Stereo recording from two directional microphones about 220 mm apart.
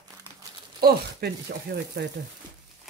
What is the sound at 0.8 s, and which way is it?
Speech, 45° right (ahead or behind).